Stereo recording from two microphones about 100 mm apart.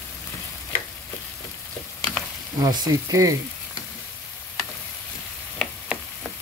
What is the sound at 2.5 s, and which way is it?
Frying, 40° right (ahead or behind).